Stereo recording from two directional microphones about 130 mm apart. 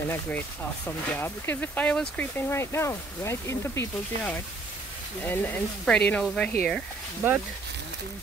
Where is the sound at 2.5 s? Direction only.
20° left (ahead or behind).